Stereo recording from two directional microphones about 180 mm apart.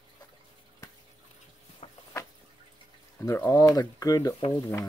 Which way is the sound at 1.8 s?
35° left (ahead or behind).